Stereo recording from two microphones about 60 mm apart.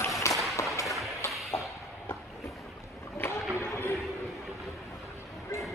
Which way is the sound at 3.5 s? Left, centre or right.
Left.